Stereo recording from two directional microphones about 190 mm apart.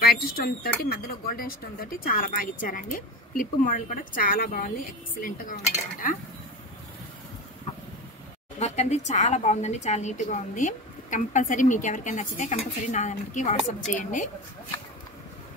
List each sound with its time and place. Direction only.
0.0 s a sound: 55° left (ahead or behind)
0.8 s speech: 50° left (ahead or behind)
8.5 s a woman's voice: 35° left (ahead or behind)